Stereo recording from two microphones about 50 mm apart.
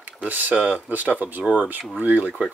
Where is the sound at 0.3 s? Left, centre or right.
Right.